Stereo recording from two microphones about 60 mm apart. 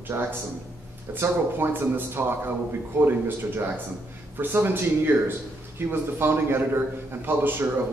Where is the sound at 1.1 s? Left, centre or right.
Right.